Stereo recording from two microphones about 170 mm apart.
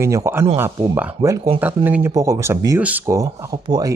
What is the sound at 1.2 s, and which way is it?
Speech, 30° right (ahead or behind).